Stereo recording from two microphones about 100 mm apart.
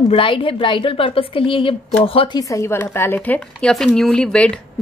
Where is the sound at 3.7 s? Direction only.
5° left (ahead or behind).